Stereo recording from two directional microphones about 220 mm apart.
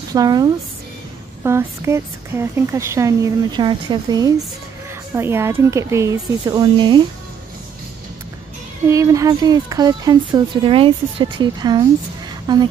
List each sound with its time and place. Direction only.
0.1 s speech: 15° right (ahead or behind)
8.8 s speech: 15° right (ahead or behind)